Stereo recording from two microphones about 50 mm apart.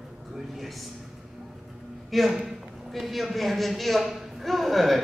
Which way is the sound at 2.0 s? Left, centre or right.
Centre.